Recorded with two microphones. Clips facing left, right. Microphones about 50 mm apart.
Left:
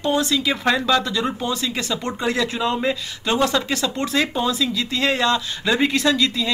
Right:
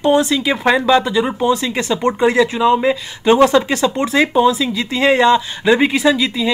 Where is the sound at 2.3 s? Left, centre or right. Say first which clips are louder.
Right 5 dB; centre.